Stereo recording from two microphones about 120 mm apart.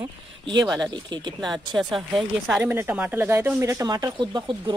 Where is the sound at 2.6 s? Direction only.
15° right (ahead or behind).